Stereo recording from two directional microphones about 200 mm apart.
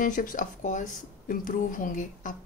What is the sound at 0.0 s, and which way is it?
Speech, 45° left (ahead or behind).